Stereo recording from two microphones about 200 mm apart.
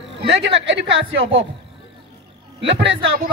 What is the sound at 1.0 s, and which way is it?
Speech, 65° right (ahead or behind).